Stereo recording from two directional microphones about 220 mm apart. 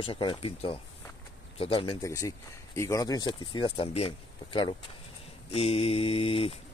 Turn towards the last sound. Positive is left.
turn(degrees=25)  # may be behind; listen again after turning